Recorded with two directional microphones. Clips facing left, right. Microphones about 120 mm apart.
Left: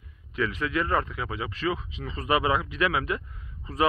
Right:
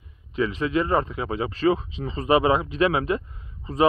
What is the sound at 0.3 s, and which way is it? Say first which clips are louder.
Speech: right 5 dB; 25° right (ahead or behind).